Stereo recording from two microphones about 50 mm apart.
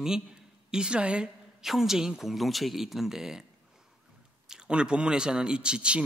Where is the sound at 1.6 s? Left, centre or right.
Centre.